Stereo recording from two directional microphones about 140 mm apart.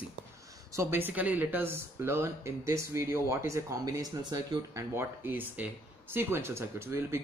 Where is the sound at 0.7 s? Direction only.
20° right (ahead or behind).